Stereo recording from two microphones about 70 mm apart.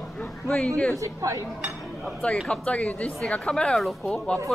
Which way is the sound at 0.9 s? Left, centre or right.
Right.